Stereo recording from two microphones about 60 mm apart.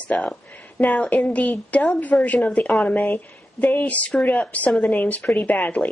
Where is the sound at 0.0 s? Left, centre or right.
Centre.